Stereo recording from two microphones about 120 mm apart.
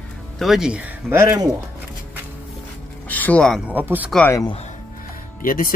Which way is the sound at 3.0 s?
15° left (ahead or behind).